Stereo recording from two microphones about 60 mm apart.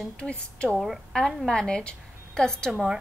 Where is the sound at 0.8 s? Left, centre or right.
Centre.